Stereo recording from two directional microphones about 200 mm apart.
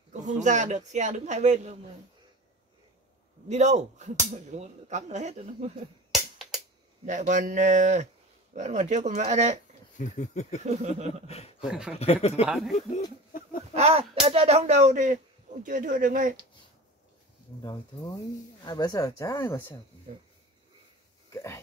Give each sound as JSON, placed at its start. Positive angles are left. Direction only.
{"t": 0.1, "sound": "speech", "side_deg": -35}
{"t": 3.4, "sound": "speech", "side_deg": -35}
{"t": 6.1, "sound": "music", "side_deg": 0}
{"t": 7.1, "sound": "speech", "side_deg": -40}
{"t": 9.9, "sound": "a sound", "side_deg": 40}
{"t": 10.6, "sound": "speech", "side_deg": -35}
{"t": 11.2, "sound": "a sound", "side_deg": 30}
{"t": 11.6, "sound": "speech", "side_deg": -5}
{"t": 12.0, "sound": "a sound", "side_deg": 30}
{"t": 12.4, "sound": "speech", "side_deg": 0}
{"t": 13.7, "sound": "speech", "side_deg": -30}
{"t": 17.6, "sound": "speech", "side_deg": 20}
{"t": 20.1, "sound": "speech", "side_deg": -40}
{"t": 21.3, "sound": "a sound", "side_deg": 15}